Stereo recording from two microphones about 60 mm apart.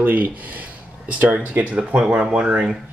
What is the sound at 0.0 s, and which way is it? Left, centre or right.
Speech, right.